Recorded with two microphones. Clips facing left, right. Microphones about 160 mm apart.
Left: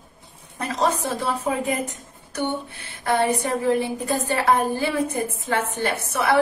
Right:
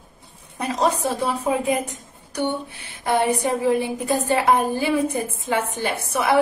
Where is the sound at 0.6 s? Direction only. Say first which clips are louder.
Right 1 dB; 15° right (ahead or behind).